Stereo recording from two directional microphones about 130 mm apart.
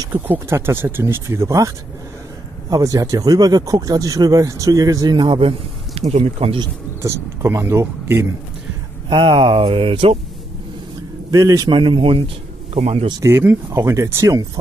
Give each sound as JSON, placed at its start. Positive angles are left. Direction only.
{"t": 0.1, "sound": "speech", "side_deg": -15}
{"t": 2.7, "sound": "speech", "side_deg": -25}
{"t": 5.9, "sound": "speech", "side_deg": -50}
{"t": 7.0, "sound": "speech", "side_deg": -20}
{"t": 9.1, "sound": "speech", "side_deg": -40}
{"t": 11.3, "sound": "speech", "side_deg": -25}
{"t": 11.7, "sound": "speech", "side_deg": -40}
{"t": 13.2, "sound": "speech", "side_deg": -15}